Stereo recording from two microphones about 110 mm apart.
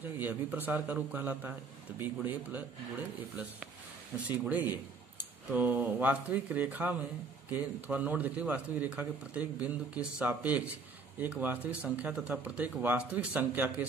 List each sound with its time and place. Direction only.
0.0 s a man's voice: 15° right (ahead or behind)
4.3 s a man's voice: 15° right (ahead or behind)